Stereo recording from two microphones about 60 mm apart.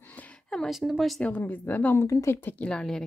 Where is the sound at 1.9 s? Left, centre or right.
Left.